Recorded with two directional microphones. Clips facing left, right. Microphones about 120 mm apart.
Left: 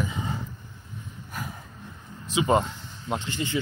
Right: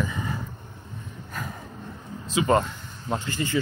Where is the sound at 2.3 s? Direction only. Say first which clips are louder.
Right 1 dB; 15° left (ahead or behind).